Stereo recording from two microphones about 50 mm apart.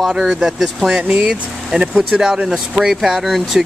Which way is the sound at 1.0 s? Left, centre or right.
Right.